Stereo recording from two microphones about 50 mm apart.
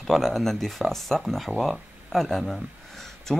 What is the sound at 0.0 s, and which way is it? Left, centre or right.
Speech, centre.